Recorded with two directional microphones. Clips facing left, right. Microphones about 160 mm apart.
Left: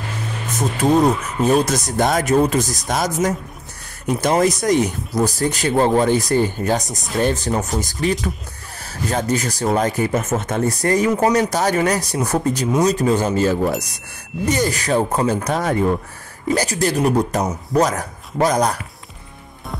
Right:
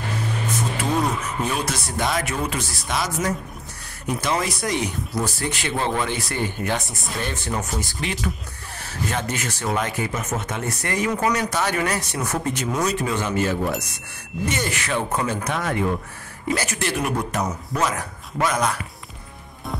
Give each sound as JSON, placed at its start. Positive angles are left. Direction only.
{"t": 0.7, "sound": "a man's voice", "side_deg": 40}